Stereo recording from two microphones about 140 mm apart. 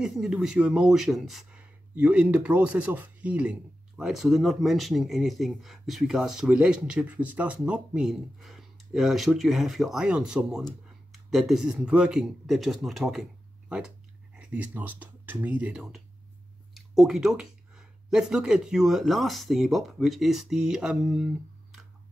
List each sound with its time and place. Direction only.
0.0 s speech: 5° right (ahead or behind)